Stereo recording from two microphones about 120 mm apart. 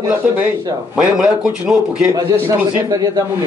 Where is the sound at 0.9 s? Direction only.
5° right (ahead or behind).